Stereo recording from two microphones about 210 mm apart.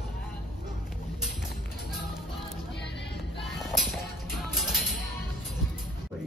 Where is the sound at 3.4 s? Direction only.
Centre (ahead or behind).